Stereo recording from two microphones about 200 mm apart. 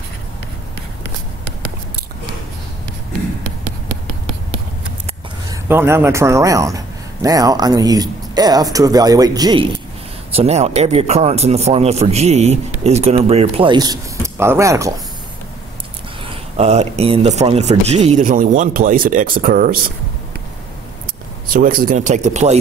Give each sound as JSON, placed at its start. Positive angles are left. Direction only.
{"t": 5.5, "sound": "a man's voice", "side_deg": -10}
{"t": 10.3, "sound": "speech", "side_deg": -30}
{"t": 16.3, "sound": "speech", "side_deg": -30}
{"t": 21.5, "sound": "speech", "side_deg": -45}